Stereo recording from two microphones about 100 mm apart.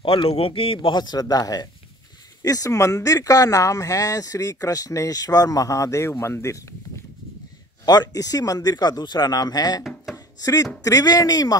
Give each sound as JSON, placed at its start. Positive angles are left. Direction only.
{"t": 0.0, "sound": "a man's voice", "side_deg": 65}
{"t": 0.7, "sound": "speech", "side_deg": 50}
{"t": 7.8, "sound": "speech", "side_deg": 40}
{"t": 10.1, "sound": "chopping", "side_deg": 35}
{"t": 10.8, "sound": "speech", "side_deg": 35}